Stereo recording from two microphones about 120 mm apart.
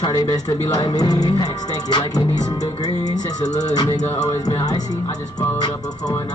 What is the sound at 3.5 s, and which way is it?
Speech, 75° left (ahead or behind).